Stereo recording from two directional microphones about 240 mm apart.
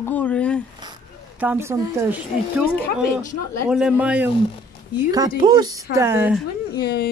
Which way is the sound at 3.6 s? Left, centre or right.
Centre.